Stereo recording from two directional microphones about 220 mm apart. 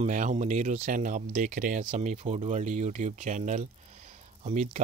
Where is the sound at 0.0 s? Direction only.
35° right (ahead or behind).